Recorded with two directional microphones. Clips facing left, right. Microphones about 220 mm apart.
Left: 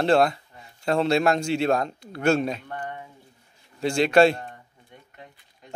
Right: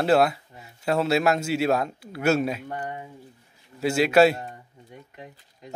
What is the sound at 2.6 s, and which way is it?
Speech, 20° right (ahead or behind).